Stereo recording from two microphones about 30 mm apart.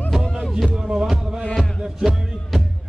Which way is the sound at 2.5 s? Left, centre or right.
Centre.